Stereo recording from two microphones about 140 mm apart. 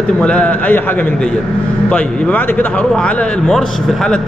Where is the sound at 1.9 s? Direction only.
10° left (ahead or behind).